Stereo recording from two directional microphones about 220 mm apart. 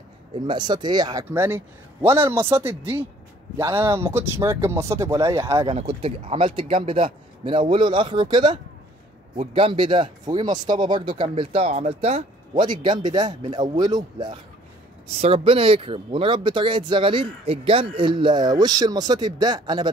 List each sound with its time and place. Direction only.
0.5 s speech: 20° right (ahead or behind)
5.8 s speech: 25° right (ahead or behind)